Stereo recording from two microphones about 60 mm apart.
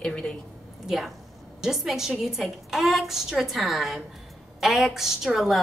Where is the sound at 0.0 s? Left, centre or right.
Centre.